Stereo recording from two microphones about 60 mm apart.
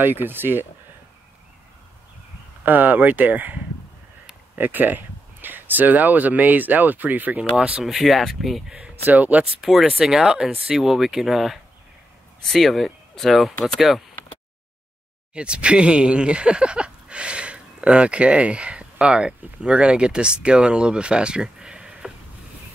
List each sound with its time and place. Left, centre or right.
0.0 s speech: right
2.6 s speech: right
4.6 s speech: right
7.8 s speech: centre
8.6 s speech: centre
9.0 s speech: right
9.5 s speech: centre
15.3 s speech: centre